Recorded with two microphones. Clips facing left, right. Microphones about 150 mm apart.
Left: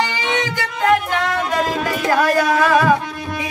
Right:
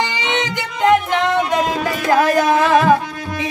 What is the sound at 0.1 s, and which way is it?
Music, 20° right (ahead or behind).